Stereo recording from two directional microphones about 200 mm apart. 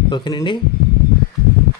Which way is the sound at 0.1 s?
20° left (ahead or behind).